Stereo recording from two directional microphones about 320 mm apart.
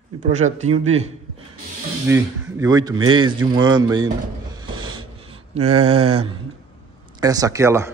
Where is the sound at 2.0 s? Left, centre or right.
Centre.